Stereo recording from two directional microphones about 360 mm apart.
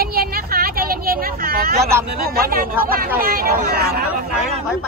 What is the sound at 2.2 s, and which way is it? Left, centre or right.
Speech, right.